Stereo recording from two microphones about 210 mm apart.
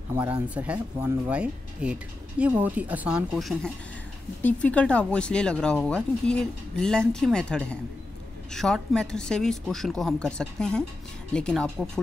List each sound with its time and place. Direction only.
0.1 s speech: 5° right (ahead or behind)